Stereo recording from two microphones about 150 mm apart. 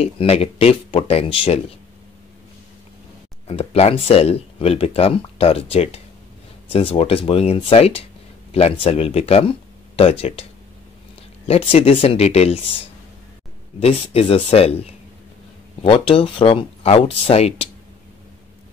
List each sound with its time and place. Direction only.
0.0 s speech: 40° left (ahead or behind)
3.4 s speech: 40° left (ahead or behind)
11.4 s speech: 40° left (ahead or behind)
13.7 s speech: 40° left (ahead or behind)
15.8 s speech: 35° left (ahead or behind)